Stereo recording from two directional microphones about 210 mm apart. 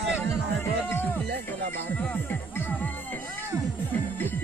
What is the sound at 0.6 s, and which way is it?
Music, 10° left (ahead or behind).